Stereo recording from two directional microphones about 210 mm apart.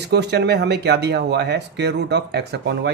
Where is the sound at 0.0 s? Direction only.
55° right (ahead or behind).